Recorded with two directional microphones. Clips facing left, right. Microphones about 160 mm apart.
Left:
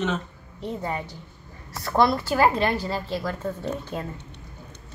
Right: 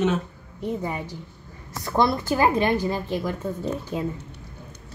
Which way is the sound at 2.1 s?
15° right (ahead or behind).